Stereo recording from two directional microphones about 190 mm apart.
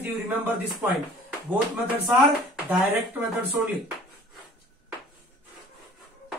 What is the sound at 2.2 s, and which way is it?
Speech, centre (ahead or behind).